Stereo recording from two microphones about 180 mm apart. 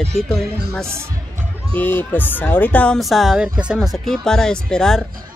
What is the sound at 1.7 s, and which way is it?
Speech, 10° left (ahead or behind).